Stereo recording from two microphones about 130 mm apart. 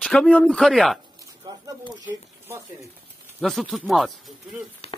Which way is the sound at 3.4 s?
Centre (ahead or behind).